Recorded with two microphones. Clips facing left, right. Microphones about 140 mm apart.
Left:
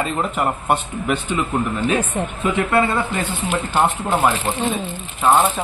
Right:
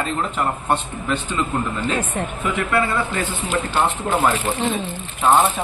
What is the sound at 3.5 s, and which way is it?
Speech, 15° left (ahead or behind).